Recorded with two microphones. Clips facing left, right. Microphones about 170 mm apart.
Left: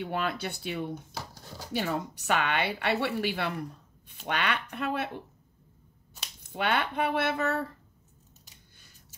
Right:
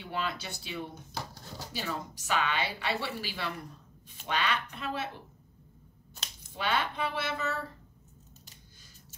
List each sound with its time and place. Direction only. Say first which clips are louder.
0.0 s a woman's voice: left 4 dB; 55° left (ahead or behind)
1.1 s a sound: right 1 dB; 5° left (ahead or behind)
1.7 s a woman's voice: left 7 dB; 60° left (ahead or behind)
6.5 s a woman's voice: left 3 dB; 60° left (ahead or behind)